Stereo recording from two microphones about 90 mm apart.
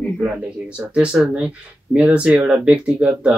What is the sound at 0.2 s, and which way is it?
Speech, 10° right (ahead or behind).